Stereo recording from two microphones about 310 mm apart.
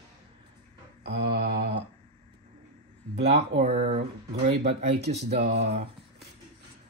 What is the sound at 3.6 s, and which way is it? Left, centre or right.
Speech, centre.